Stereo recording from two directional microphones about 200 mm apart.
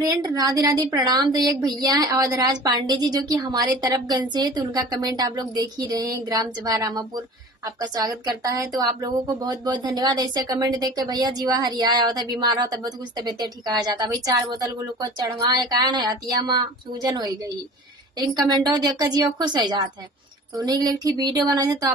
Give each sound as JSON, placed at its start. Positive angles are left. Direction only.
{"t": 0.0, "sound": "speech", "side_deg": -20}